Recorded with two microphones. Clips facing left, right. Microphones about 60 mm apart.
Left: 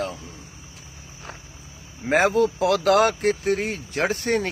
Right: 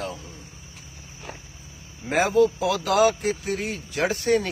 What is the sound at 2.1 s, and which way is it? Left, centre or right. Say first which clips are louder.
Speech: left 1 dB; left.